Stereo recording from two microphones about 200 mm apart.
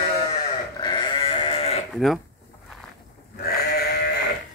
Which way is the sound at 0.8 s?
20° left (ahead or behind).